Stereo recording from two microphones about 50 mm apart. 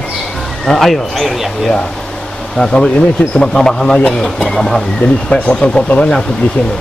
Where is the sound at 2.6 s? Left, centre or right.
Centre.